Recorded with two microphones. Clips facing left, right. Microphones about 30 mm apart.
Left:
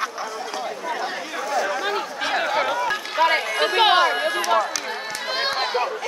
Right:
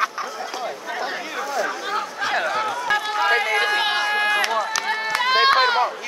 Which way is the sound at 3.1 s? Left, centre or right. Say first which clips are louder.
Left 2 dB; centre.